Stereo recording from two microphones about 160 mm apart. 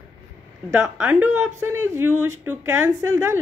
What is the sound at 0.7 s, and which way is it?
A woman's voice, 15° right (ahead or behind).